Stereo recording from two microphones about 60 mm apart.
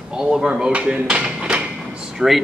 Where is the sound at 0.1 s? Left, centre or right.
Centre.